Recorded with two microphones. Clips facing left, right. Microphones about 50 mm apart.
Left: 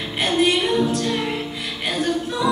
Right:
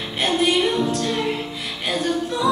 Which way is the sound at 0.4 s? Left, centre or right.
Left.